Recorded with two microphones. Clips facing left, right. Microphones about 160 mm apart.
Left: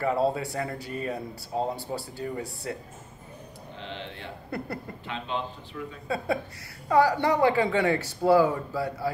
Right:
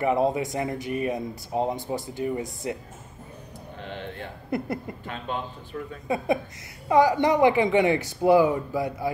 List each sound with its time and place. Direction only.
0.0 s speech: 15° right (ahead or behind)
3.8 s a sound: 50° right (ahead or behind)
4.5 s speech: 20° right (ahead or behind)
5.0 s a man's voice: 50° right (ahead or behind)
6.0 s speech: 20° right (ahead or behind)